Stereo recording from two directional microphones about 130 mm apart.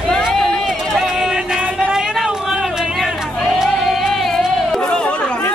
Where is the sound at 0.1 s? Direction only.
5° left (ahead or behind).